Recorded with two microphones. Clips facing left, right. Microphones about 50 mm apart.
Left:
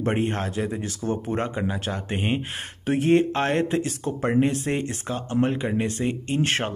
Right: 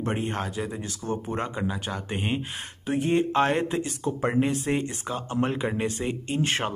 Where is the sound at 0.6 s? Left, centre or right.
Centre.